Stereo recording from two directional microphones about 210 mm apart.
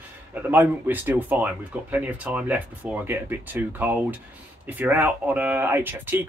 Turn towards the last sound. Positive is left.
turn(degrees=-10)  # may be behind; listen again after turning